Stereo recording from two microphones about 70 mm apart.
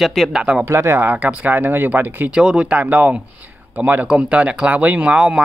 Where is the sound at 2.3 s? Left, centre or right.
Centre.